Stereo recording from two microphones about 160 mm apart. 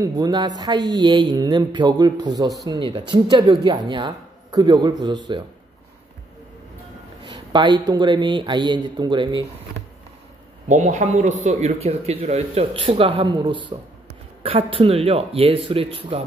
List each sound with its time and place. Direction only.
0.0 s speech: 25° right (ahead or behind)
7.2 s speech: 30° right (ahead or behind)
10.7 s a man's voice: 50° right (ahead or behind)